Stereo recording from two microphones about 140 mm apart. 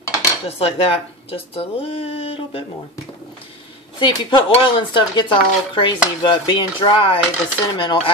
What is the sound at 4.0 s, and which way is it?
Speech, 30° left (ahead or behind).